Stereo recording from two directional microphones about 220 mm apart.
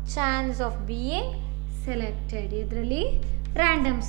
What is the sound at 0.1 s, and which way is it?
A woman's voice, 10° right (ahead or behind).